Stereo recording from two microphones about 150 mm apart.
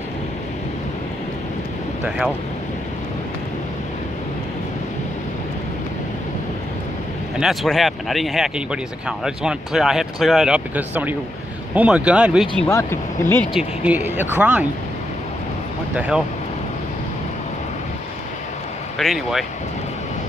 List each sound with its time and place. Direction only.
2.0 s speech: 5° right (ahead or behind)
7.3 s speech: centre (ahead or behind)
12.6 s speech: 15° left (ahead or behind)
13.5 s speech: 5° right (ahead or behind)
15.9 s speech: 10° right (ahead or behind)
18.9 s speech: centre (ahead or behind)